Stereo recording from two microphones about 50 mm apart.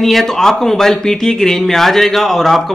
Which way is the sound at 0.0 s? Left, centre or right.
Centre.